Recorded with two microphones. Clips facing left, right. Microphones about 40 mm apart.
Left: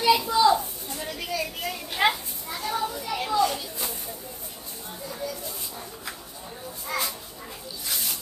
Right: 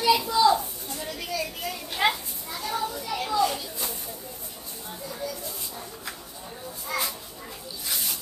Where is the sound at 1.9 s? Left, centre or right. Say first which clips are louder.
Left 1 dB; centre.